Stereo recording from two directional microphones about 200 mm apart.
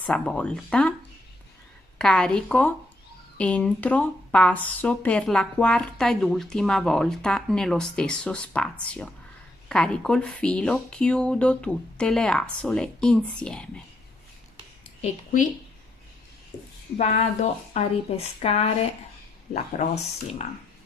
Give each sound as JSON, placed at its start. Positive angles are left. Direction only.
{"t": 0.0, "sound": "a woman's voice", "side_deg": 5}
{"t": 2.0, "sound": "a woman's voice", "side_deg": 5}
{"t": 16.5, "sound": "a sound", "side_deg": 20}
{"t": 16.9, "sound": "a woman's voice", "side_deg": 35}
{"t": 20.4, "sound": "a woman's voice", "side_deg": 35}